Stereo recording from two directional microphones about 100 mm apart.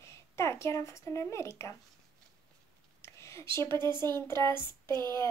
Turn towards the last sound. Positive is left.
turn(degrees=-45)  # may be behind; listen again after turning